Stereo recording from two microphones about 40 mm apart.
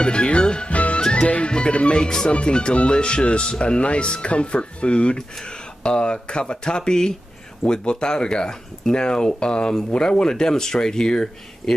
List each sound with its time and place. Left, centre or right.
0.0 s speech: left
0.7 s music: left
1.0 s speech: left
2.0 s speech: centre